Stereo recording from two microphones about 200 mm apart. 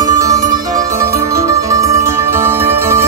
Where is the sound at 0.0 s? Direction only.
15° right (ahead or behind).